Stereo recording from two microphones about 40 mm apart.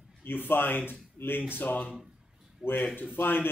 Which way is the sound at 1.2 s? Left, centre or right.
Left.